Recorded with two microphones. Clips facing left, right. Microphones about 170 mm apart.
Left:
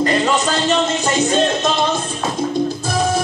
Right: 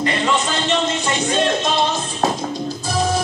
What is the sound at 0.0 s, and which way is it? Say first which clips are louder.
Music: left 3 dB; 40° left (ahead or behind).